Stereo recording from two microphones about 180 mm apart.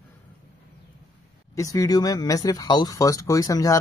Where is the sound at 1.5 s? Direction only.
20° left (ahead or behind).